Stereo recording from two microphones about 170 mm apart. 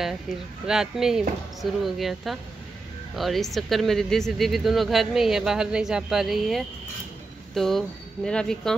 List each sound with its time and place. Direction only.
0.3 s speech: centre (ahead or behind)